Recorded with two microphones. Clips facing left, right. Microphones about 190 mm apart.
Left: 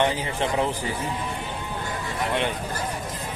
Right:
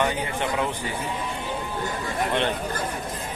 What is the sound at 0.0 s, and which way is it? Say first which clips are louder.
Speech: left 1 dB; 30° left (ahead or behind).